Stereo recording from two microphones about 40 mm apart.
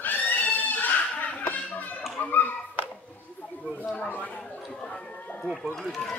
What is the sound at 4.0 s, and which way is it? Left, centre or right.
Chatter, left.